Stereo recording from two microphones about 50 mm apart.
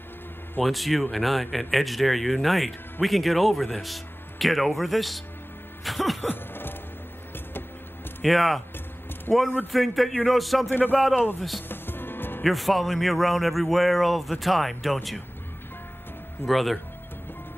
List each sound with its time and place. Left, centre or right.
0.6 s speech: centre
5.9 s music: centre
6.2 s a sound: left
8.2 s speech: centre
9.3 s speech: left
9.7 s speech: centre
10.7 s speech: left
11.7 s music: left
12.4 s speech: centre
16.4 s speech: centre